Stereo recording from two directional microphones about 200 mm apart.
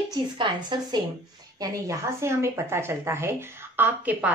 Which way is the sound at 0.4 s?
20° right (ahead or behind).